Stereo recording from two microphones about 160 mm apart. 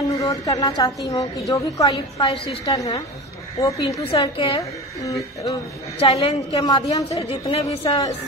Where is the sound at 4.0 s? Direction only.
35° left (ahead or behind).